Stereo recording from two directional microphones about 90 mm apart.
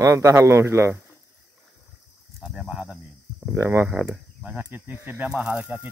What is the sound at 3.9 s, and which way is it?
Speech, 10° right (ahead or behind).